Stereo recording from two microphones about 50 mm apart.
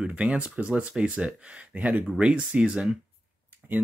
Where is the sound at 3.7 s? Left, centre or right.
Right.